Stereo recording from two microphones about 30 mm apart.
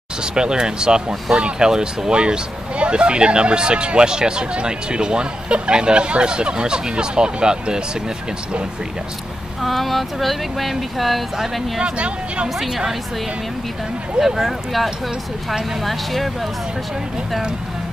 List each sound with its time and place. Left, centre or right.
0.2 s speech: right
9.6 s speech: centre
11.8 s speech: right
14.2 s speech: centre